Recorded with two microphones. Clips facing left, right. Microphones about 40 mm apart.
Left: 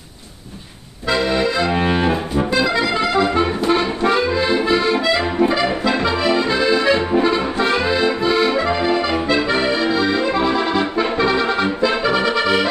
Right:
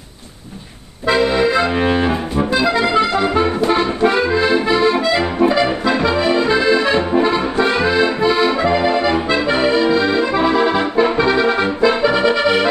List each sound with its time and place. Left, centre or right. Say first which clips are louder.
1.0 s accordion: right 3 dB; right
1.7 s music: right 1 dB; centre
3.7 s accordion: right 1 dB; centre
7.1 s music: right 1 dB; centre
8.2 s accordion: right 2 dB; centre
12.0 s music: right 3 dB; centre